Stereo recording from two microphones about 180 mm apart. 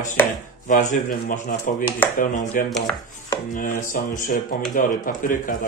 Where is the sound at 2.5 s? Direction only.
50° left (ahead or behind).